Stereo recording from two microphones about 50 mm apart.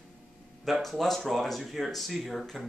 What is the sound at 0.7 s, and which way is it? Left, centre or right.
Speech, centre.